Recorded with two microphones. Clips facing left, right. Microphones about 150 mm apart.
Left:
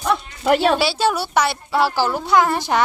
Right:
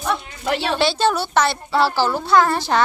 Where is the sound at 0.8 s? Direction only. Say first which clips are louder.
Right 1 dB; 10° left (ahead or behind).